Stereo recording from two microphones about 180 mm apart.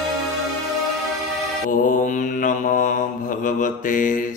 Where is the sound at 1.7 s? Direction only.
45° left (ahead or behind).